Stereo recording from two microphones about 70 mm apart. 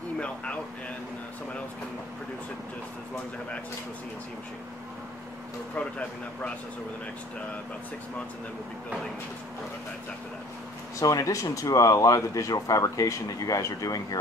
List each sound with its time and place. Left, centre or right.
5.8 s speech: centre
11.0 s speech: left